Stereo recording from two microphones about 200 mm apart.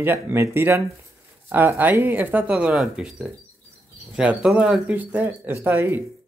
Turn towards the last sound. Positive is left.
turn(degrees=-10)  # may be behind; listen again after turning